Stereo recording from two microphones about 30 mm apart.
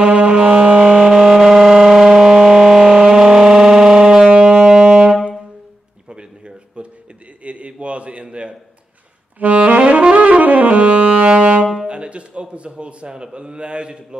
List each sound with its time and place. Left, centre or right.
0.0 s music: right
0.7 s vehicle: right
1.2 s civil defense siren: centre
4.3 s wind instrument: right
4.7 s saxophone: right
6.0 s a sound: right
9.4 s saxophone: right
11.1 s music: right
11.9 s a man's voice: right